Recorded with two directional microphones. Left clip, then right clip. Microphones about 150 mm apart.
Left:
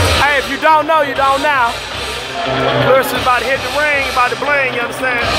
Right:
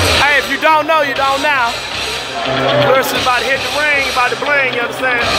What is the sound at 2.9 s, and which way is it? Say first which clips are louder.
Speech: left 1 dB; 5° left (ahead or behind).